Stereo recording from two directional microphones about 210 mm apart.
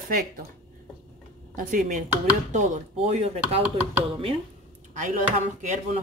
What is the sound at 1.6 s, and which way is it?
Speech, 40° right (ahead or behind).